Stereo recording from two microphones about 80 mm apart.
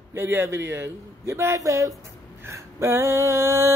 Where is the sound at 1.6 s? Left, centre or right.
Right.